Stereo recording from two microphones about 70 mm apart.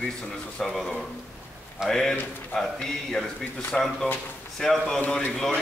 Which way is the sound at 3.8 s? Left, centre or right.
Centre.